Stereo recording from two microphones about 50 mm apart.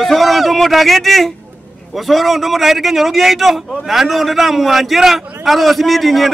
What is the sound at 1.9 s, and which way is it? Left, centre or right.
A man's voice, centre.